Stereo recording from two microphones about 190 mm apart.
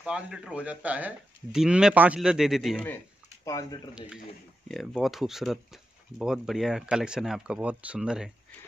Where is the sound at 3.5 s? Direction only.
20° left (ahead or behind).